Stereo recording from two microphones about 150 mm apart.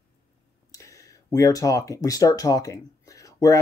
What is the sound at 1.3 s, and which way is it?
Speech, 25° left (ahead or behind).